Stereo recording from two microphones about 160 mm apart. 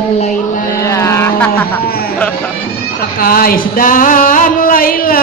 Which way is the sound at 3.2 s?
65° left (ahead or behind).